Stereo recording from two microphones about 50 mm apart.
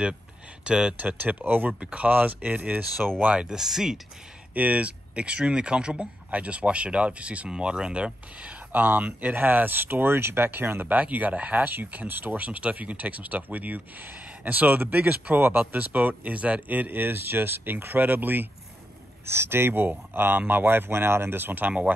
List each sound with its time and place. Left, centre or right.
0.7 s speech: centre
0.9 s speech: right
1.7 s speech: centre
3.3 s speech: centre
4.6 s speech: right
8.7 s speech: right
10.9 s speech: right
19.2 s speech: right